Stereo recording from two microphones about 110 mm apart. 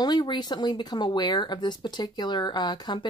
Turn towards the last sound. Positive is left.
turn(degrees=40)  # may be behind; listen again after turning